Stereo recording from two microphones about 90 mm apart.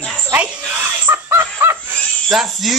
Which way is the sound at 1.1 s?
30° right (ahead or behind).